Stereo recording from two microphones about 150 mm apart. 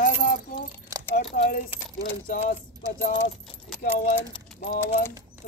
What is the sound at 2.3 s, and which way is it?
Keys jangling, 75° left (ahead or behind).